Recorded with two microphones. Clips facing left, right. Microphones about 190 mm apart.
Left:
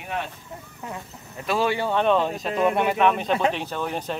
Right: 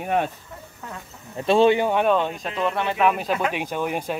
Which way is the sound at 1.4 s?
25° right (ahead or behind).